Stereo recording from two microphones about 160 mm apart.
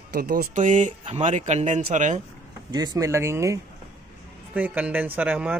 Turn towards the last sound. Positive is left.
turn(degrees=-10)  # may be behind; listen again after turning